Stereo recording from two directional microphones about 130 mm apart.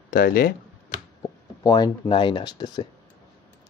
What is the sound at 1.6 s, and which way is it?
Speech, 30° left (ahead or behind).